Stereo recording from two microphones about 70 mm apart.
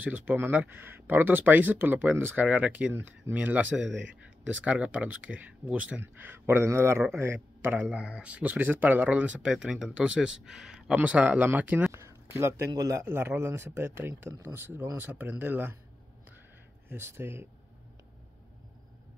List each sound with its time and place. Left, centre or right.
0.0 s speech: right
2.9 s speech: right
3.3 s speech: right
8.0 s speech: centre
9.5 s speech: centre
11.0 s speech: right
11.9 s speech: right
12.7 s speech: right
13.0 s speech: right
16.9 s speech: right